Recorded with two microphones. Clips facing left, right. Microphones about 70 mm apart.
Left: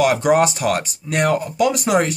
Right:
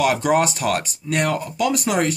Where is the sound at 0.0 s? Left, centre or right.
Centre.